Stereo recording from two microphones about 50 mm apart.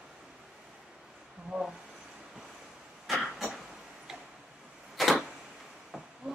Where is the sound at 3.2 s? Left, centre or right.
Centre.